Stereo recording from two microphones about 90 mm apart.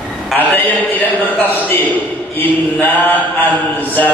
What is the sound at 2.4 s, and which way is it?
Mantra, 20° left (ahead or behind).